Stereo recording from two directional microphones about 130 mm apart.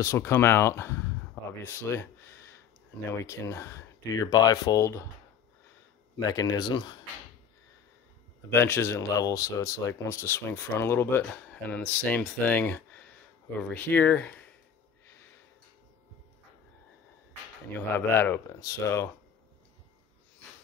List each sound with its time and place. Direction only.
0.0 s speech: 20° left (ahead or behind)
3.1 s speech: 20° left (ahead or behind)
6.1 s speech: 30° left (ahead or behind)
8.5 s speech: 20° left (ahead or behind)
17.7 s speech: 15° left (ahead or behind)